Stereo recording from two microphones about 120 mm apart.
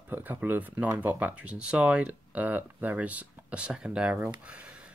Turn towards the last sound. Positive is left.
turn(degrees=-10)  # may be behind; listen again after turning